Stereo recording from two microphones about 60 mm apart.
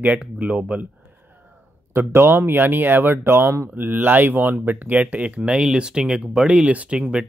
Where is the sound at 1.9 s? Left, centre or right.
Right.